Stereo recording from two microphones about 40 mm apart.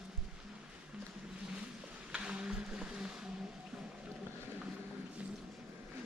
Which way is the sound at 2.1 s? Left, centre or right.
Right.